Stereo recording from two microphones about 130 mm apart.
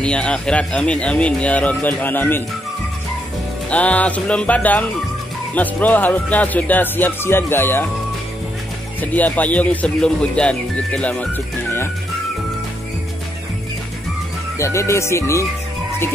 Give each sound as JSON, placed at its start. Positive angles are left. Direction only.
{"t": 0.0, "sound": "speech", "side_deg": 10}
{"t": 3.7, "sound": "speech", "side_deg": 10}
{"t": 9.0, "sound": "speech", "side_deg": 10}
{"t": 14.6, "sound": "speech", "side_deg": 20}